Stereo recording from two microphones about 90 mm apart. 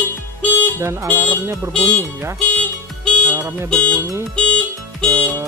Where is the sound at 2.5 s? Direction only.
10° left (ahead or behind).